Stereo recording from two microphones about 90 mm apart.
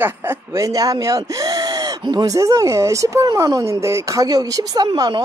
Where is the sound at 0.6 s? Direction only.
40° right (ahead or behind).